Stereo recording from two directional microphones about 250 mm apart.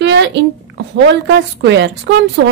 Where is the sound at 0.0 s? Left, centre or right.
Right.